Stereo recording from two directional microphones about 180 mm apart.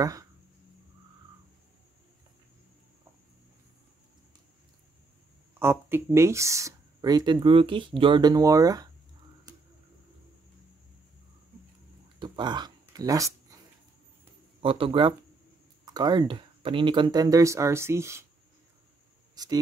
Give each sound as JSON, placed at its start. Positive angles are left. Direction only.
{"t": 0.0, "sound": "speech", "side_deg": -20}
{"t": 5.6, "sound": "speech", "side_deg": -15}
{"t": 12.2, "sound": "a sound", "side_deg": -25}
{"t": 14.6, "sound": "speech", "side_deg": -30}
{"t": 19.3, "sound": "speech", "side_deg": -20}